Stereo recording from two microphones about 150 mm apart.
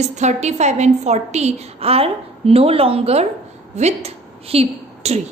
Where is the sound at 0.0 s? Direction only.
50° right (ahead or behind).